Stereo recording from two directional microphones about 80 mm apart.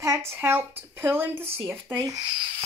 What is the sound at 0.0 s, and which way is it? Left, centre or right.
Speech, right.